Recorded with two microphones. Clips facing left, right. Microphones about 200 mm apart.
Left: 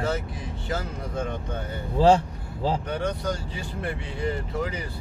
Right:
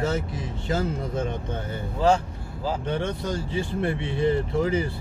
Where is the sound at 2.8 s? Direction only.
25° right (ahead or behind).